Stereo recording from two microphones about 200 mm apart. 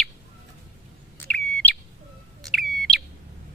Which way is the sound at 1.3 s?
5° left (ahead or behind).